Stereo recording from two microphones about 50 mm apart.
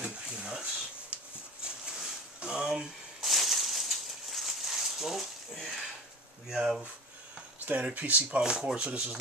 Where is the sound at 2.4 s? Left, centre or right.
Centre.